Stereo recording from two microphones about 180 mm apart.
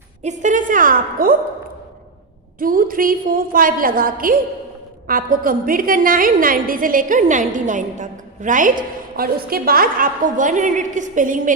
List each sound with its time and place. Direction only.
0.2 s a woman's voice: 40° right (ahead or behind)
2.6 s a woman's voice: 50° right (ahead or behind)